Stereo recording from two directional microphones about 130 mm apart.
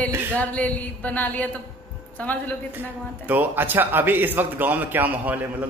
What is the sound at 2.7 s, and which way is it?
A man's voice, 15° right (ahead or behind).